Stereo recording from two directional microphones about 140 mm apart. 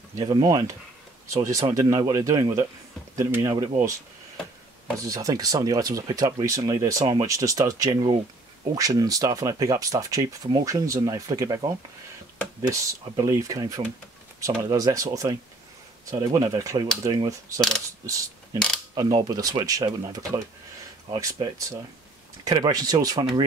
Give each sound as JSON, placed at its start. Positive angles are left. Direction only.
{"t": 0.1, "sound": "speech", "side_deg": -30}
{"t": 4.9, "sound": "speech", "side_deg": -25}
{"t": 12.6, "sound": "speech", "side_deg": -25}
{"t": 17.6, "sound": "mechanisms", "side_deg": 5}
{"t": 18.0, "sound": "speech", "side_deg": -25}